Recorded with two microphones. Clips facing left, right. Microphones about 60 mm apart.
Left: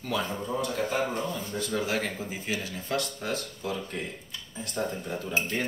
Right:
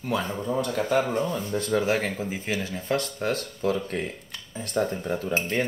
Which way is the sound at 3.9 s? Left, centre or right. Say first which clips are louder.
Right 5 dB; right.